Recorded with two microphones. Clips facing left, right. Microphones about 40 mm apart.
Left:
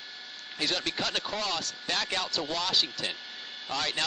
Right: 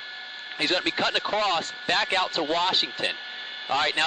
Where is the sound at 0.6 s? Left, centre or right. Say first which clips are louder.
Right 6 dB; right.